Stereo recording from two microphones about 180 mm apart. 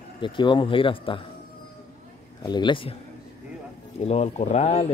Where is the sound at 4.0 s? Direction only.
35° left (ahead or behind).